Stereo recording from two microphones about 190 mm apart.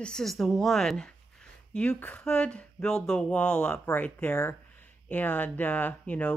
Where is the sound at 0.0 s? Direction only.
5° left (ahead or behind).